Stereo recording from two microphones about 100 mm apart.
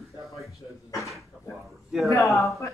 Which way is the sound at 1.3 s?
10° right (ahead or behind).